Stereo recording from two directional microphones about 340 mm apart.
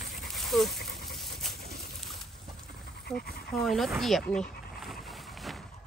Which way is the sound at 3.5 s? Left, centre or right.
Centre.